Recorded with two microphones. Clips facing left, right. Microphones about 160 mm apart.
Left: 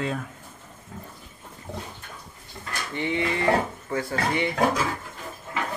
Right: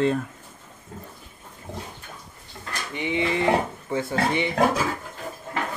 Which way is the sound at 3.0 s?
15° right (ahead or behind).